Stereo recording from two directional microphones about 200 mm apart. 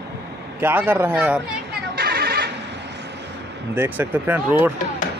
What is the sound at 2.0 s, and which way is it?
Music, 50° right (ahead or behind).